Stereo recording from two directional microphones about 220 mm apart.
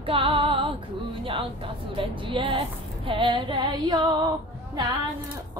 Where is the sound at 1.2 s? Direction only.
25° right (ahead or behind).